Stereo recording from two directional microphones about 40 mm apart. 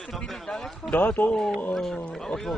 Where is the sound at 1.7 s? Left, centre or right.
Centre.